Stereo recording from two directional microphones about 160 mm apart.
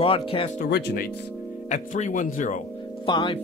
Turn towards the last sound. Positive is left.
turn(degrees=30)  # may be behind; listen again after turning